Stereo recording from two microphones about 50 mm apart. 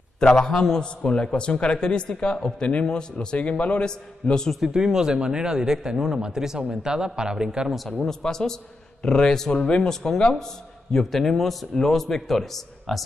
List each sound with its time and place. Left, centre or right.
0.2 s a man's voice: centre
4.6 s a man's voice: centre
8.1 s a man's voice: centre